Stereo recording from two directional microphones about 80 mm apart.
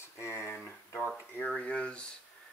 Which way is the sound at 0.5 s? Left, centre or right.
Centre.